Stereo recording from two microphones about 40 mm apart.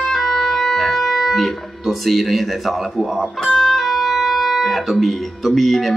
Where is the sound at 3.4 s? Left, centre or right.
Centre.